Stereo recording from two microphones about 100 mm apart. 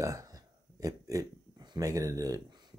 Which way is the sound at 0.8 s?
35° right (ahead or behind).